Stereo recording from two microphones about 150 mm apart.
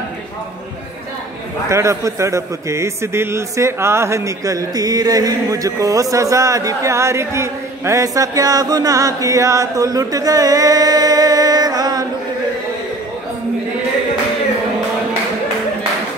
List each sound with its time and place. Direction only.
1.7 s a man's voice: 20° right (ahead or behind)